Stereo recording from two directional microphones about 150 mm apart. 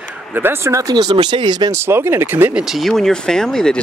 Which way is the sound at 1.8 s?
15° right (ahead or behind).